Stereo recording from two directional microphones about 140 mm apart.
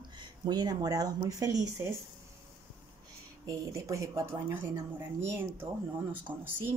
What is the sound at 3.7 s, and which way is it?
A woman's voice, 20° right (ahead or behind).